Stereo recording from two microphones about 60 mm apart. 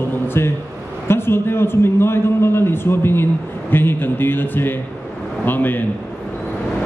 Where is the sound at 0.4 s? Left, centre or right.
Left.